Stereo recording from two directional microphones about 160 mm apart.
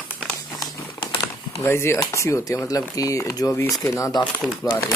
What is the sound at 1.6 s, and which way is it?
Speech, 15° left (ahead or behind).